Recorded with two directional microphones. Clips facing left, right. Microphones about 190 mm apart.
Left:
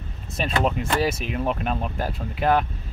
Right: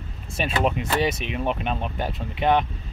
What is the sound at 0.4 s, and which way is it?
Speech, 5° right (ahead or behind).